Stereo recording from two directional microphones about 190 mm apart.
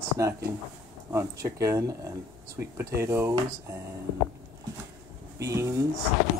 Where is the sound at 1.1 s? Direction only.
15° right (ahead or behind).